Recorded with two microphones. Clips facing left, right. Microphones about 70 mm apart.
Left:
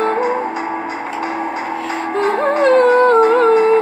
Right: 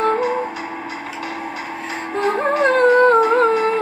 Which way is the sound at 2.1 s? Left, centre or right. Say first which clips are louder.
Left 2 dB; left.